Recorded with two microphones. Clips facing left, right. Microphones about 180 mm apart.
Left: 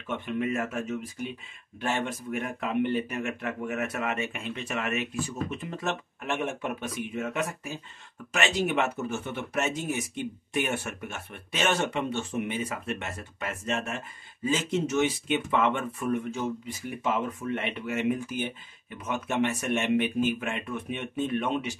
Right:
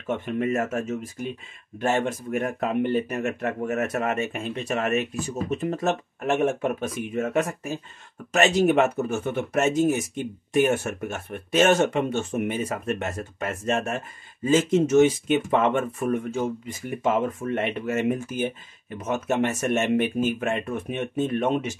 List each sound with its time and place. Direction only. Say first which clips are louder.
0.0 s speech: right 4 dB; 45° right (ahead or behind)